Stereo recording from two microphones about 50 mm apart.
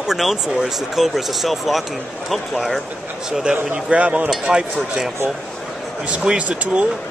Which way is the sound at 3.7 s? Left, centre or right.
Right.